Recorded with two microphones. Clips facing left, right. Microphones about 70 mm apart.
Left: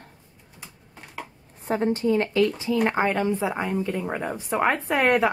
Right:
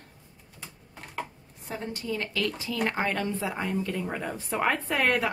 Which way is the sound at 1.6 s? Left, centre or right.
Left.